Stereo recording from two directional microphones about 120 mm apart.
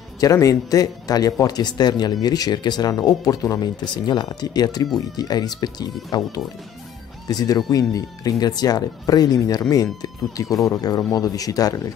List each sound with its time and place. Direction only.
0.2 s speech: 30° left (ahead or behind)